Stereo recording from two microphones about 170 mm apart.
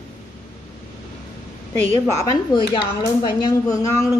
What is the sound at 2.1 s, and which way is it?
A woman's voice, 30° left (ahead or behind).